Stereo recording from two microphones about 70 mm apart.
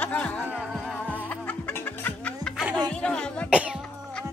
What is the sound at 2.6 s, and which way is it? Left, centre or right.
Music, centre.